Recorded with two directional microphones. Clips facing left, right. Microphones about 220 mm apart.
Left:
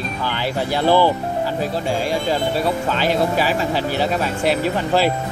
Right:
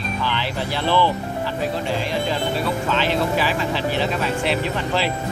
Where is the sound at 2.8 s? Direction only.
40° left (ahead or behind).